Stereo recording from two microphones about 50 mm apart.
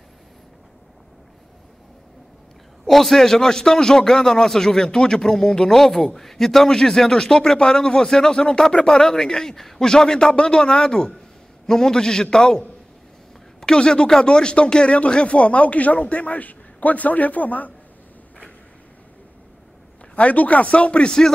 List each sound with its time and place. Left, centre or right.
2.8 s a man's voice: centre; by 17.7 s left
20.2 s speech: left